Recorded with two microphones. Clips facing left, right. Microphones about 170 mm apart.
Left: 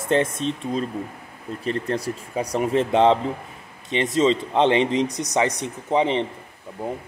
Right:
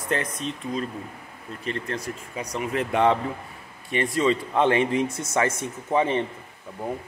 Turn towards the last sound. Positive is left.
turn(degrees=10)  # may be behind; listen again after turning